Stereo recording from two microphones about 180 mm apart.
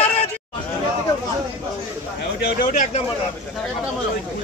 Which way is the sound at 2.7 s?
45° left (ahead or behind).